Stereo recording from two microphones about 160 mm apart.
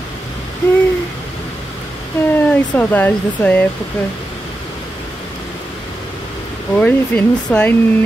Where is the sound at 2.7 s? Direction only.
10° left (ahead or behind).